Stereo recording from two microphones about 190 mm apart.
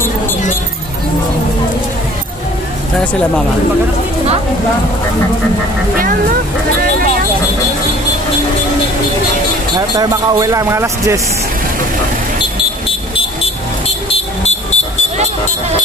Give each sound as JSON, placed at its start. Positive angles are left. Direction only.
{"t": 3.0, "sound": "speech", "side_deg": 5}
{"t": 9.8, "sound": "speech", "side_deg": -20}